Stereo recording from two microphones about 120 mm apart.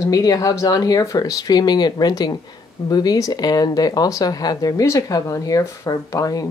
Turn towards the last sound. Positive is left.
turn(degrees=30)  # may be behind; listen again after turning